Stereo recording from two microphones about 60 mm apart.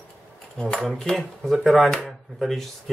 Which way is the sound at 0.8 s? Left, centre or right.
Centre.